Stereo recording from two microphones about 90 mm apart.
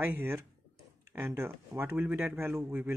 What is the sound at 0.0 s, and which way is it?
Speech, 25° right (ahead or behind).